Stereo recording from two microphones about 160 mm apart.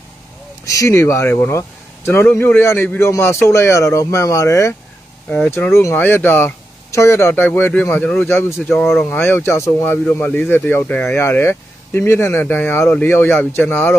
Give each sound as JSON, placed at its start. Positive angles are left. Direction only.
{"t": 0.7, "sound": "speech", "side_deg": 20}